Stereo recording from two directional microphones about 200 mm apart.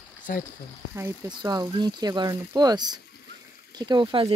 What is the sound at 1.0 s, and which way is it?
Speech, 15° right (ahead or behind).